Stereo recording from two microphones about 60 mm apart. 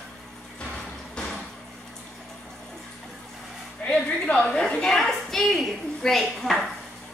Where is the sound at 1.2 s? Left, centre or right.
Centre.